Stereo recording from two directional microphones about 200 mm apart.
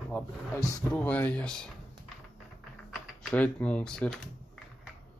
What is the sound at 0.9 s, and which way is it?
Speech, 5° left (ahead or behind).